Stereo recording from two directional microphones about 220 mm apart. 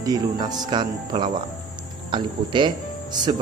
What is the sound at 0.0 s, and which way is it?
Speech, 15° right (ahead or behind).